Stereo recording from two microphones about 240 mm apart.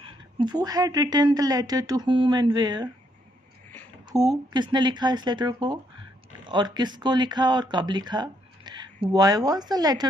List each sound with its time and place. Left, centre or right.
0.0 s speech: centre
4.1 s speech: centre